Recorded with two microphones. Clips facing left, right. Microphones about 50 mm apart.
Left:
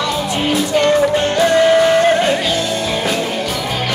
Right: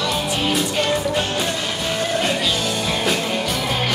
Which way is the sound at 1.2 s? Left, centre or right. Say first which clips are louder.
Left 12 dB; left.